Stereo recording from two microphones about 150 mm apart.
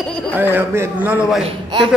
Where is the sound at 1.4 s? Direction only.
30° right (ahead or behind).